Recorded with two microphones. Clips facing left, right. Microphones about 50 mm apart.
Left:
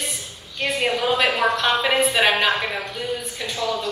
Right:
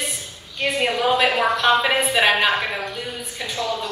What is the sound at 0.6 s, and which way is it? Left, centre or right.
A woman's voice, centre.